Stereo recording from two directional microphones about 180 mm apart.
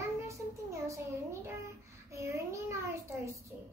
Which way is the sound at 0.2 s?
15° right (ahead or behind).